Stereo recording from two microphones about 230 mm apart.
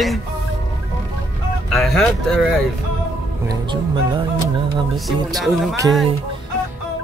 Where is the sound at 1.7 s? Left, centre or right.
Centre.